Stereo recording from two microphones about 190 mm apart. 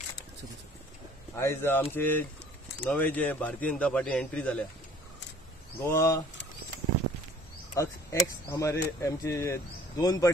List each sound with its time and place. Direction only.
1.3 s speech: 15° left (ahead or behind)
5.8 s speech: 15° left (ahead or behind)
7.7 s speech: 15° left (ahead or behind)